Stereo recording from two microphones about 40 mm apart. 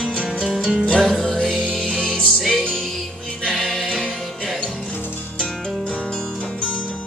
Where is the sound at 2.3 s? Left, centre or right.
Centre.